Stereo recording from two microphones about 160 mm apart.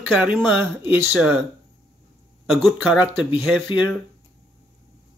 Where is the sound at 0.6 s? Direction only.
10° right (ahead or behind).